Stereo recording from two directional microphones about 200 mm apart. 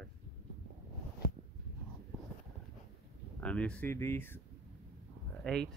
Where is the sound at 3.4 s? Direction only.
5° left (ahead or behind).